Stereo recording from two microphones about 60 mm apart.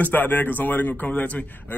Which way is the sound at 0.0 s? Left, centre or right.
Left.